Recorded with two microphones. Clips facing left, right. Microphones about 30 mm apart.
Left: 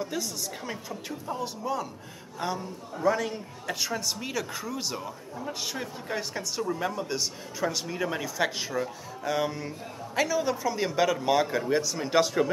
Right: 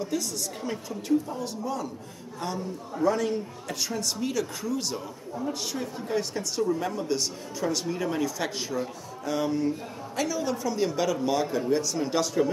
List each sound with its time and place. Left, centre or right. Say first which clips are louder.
0.0 s a man's voice: right 2 dB; centre
3.6 s a man's voice: left 5 dB; centre